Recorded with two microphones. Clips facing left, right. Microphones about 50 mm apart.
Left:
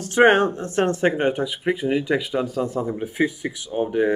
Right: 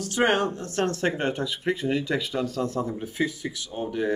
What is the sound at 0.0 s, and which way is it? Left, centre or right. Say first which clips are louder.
Speech: left 7 dB; left.